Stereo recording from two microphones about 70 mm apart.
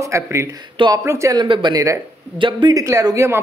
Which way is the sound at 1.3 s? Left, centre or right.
Right.